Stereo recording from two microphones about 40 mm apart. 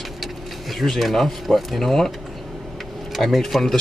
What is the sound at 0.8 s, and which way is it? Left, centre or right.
Speech, centre.